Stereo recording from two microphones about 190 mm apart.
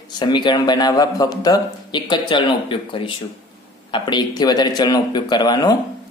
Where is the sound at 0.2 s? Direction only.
25° left (ahead or behind).